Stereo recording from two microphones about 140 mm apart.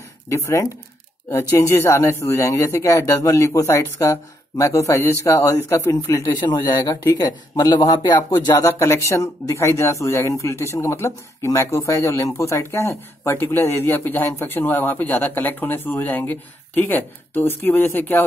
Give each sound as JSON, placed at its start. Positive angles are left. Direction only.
{"t": 0.3, "sound": "speech", "side_deg": 20}